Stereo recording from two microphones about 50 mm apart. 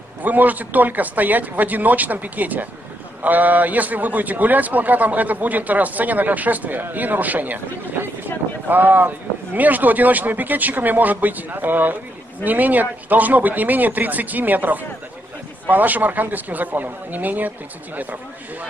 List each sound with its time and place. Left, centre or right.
0.2 s a man's voice: right